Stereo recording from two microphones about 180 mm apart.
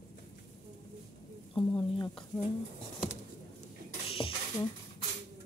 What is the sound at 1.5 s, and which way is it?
Speech, 25° left (ahead or behind).